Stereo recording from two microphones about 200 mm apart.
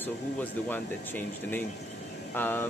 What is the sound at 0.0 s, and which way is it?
Speech, 10° left (ahead or behind).